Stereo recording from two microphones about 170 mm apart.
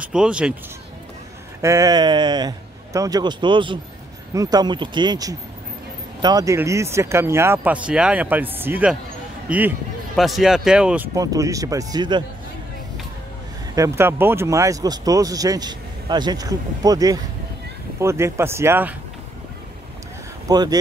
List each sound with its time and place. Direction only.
0.0 s speech: 5° right (ahead or behind)
1.6 s speech: 20° right (ahead or behind)
11.1 s speech: 20° right (ahead or behind)
13.7 s speech: 15° right (ahead or behind)
20.4 s speech: 20° right (ahead or behind)